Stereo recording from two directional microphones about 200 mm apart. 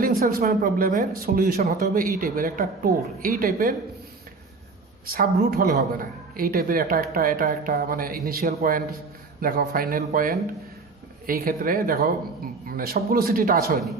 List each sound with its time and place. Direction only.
0.0 s speech: 45° right (ahead or behind)
5.1 s speech: 45° right (ahead or behind)